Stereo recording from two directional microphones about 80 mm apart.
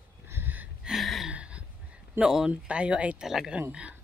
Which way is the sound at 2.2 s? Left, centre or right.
Centre.